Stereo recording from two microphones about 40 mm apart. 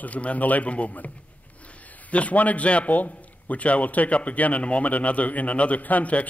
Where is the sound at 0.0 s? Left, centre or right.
Left.